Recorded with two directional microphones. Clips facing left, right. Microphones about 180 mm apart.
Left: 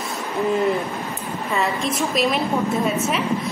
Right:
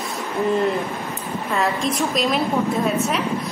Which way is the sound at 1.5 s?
Centre (ahead or behind).